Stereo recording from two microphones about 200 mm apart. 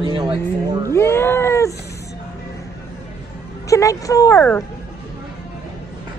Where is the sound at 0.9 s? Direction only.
15° left (ahead or behind).